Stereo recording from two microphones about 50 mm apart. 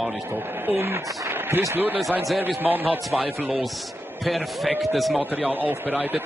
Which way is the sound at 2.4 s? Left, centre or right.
Right.